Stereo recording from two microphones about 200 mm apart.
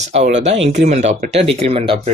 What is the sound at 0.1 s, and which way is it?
Speech, 35° right (ahead or behind).